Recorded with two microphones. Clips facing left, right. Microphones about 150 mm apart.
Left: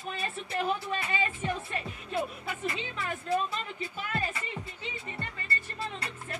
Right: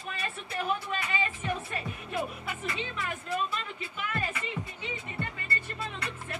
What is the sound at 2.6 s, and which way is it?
Speech, 30° left (ahead or behind).